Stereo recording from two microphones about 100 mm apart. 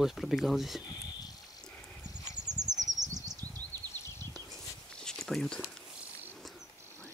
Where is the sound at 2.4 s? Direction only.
40° right (ahead or behind).